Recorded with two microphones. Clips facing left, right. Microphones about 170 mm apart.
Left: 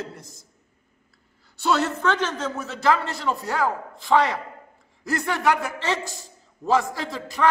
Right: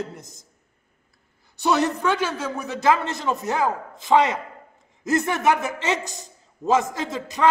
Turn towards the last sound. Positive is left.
turn(degrees=-20)  # may be behind; listen again after turning